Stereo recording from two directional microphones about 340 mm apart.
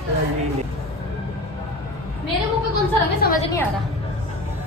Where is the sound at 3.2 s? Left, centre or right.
Left.